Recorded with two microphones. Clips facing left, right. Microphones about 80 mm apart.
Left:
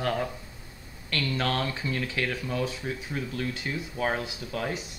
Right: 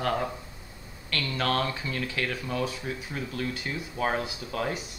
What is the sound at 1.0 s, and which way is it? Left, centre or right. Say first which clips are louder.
Speech: even; centre.